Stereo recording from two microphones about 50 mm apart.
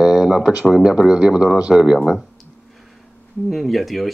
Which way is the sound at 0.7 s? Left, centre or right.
Centre.